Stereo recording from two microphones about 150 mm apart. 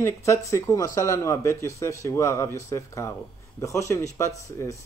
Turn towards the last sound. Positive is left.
turn(degrees=20)  # may be behind; listen again after turning